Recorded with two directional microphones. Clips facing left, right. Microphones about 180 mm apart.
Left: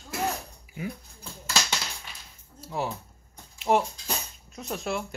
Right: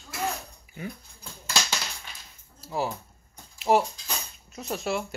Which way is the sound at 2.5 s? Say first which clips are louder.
Right 1 dB; centre (ahead or behind).